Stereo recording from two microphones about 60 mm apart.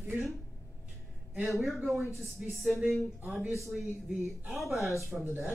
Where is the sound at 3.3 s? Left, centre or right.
Centre.